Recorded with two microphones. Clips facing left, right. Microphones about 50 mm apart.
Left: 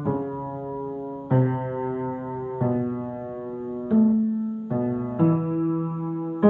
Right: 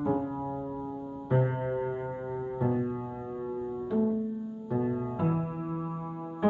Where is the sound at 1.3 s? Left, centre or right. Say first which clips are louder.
Left 4 dB; centre.